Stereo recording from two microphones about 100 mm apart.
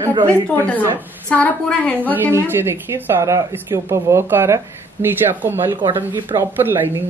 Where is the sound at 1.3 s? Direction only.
15° left (ahead or behind).